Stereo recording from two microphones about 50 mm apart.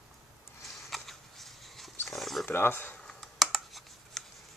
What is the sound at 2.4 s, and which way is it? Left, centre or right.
Speech, left.